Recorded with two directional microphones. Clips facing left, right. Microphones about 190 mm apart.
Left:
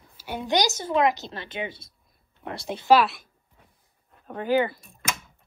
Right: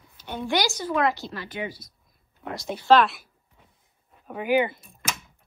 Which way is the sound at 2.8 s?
10° left (ahead or behind).